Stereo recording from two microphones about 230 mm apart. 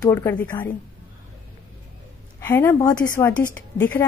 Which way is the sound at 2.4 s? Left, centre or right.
Centre.